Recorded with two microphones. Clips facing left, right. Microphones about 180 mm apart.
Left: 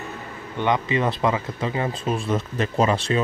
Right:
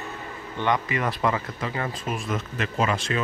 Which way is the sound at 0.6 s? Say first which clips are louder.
Left 3 dB; 20° left (ahead or behind).